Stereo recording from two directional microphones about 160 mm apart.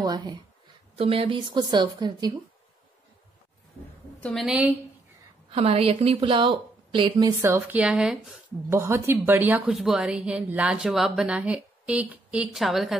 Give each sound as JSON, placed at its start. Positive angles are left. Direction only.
{"t": 0.0, "sound": "a woman's voice", "side_deg": -25}
{"t": 0.9, "sound": "a woman's voice", "side_deg": -35}
{"t": 4.2, "sound": "a woman's voice", "side_deg": 0}
{"t": 5.5, "sound": "a woman's voice", "side_deg": -40}
{"t": 8.6, "sound": "a woman's voice", "side_deg": -15}